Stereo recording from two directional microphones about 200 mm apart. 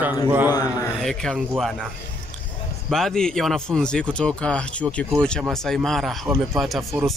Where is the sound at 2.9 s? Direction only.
5° left (ahead or behind).